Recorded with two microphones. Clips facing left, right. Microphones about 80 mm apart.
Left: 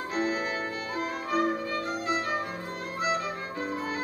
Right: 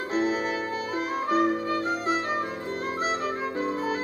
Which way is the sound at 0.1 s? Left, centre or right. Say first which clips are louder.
Right 4 dB; right.